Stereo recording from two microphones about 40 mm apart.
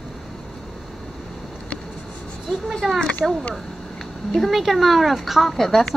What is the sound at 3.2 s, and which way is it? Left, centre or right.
Speech, centre.